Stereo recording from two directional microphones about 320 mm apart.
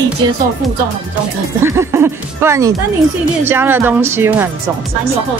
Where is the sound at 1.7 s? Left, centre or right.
Centre.